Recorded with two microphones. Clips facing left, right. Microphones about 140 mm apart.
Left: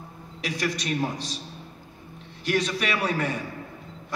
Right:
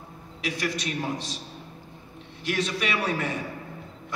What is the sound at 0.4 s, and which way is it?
Speech, 40° left (ahead or behind).